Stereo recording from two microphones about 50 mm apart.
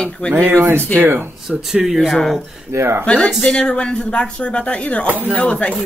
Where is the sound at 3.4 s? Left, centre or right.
Left.